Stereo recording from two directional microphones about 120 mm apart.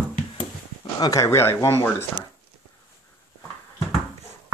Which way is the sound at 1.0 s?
25° left (ahead or behind).